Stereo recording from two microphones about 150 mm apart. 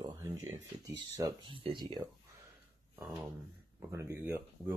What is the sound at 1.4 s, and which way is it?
Speech, 35° right (ahead or behind).